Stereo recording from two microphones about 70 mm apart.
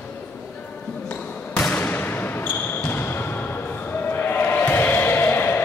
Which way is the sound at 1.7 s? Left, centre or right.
Left.